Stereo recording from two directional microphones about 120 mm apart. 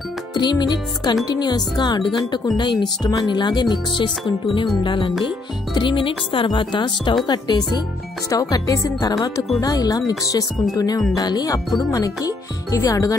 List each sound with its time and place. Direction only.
0.3 s speech: 40° left (ahead or behind)